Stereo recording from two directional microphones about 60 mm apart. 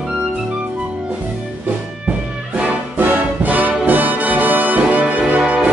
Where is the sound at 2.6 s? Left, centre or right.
Right.